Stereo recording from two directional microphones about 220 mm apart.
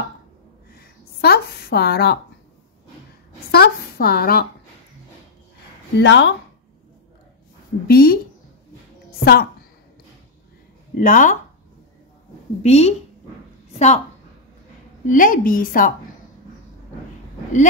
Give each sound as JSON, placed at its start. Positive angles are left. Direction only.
{"t": 0.7, "sound": "a woman's voice", "side_deg": 45}
{"t": 3.5, "sound": "a woman's voice", "side_deg": 45}
{"t": 5.9, "sound": "a woman's voice", "side_deg": 50}
{"t": 7.9, "sound": "a woman's voice", "side_deg": 45}
{"t": 9.2, "sound": "a woman's voice", "side_deg": 45}
{"t": 11.0, "sound": "a woman's voice", "side_deg": 35}
{"t": 12.6, "sound": "a woman's voice", "side_deg": 30}
{"t": 15.0, "sound": "a woman's voice", "side_deg": 35}